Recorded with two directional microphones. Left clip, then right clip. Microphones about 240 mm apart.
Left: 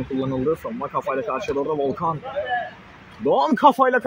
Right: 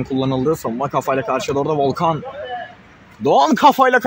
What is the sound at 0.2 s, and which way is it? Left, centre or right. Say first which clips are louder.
Speech: right 4 dB; right.